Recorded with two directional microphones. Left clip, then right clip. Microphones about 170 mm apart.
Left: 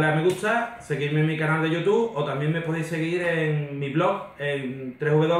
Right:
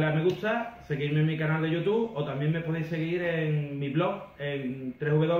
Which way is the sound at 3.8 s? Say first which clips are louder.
Left 6 dB; 20° left (ahead or behind).